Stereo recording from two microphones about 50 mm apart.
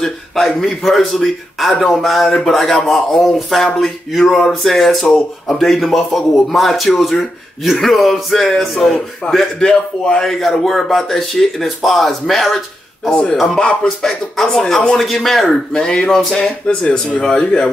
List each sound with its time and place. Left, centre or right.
0.0 s a man's voice: centre
10.6 s speech: centre
13.1 s a man's voice: centre
15.7 s a man's voice: centre